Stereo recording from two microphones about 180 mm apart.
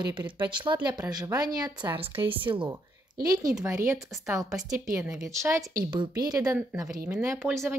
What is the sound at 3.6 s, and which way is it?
Speech, 15° right (ahead or behind).